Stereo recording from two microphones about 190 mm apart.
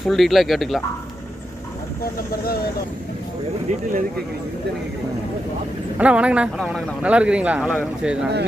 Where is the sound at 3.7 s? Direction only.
40° right (ahead or behind).